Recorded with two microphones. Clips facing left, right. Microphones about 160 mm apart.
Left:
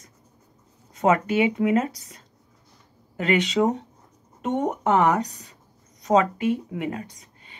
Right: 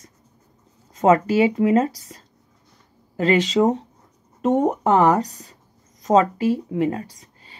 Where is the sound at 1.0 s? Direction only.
35° right (ahead or behind).